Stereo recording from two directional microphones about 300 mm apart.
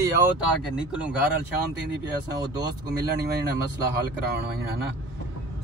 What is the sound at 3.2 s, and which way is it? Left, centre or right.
Speech, right.